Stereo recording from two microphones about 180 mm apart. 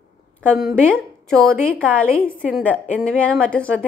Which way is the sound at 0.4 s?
Centre (ahead or behind).